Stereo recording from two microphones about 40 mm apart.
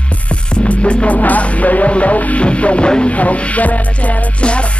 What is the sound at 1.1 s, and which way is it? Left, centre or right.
Music, left.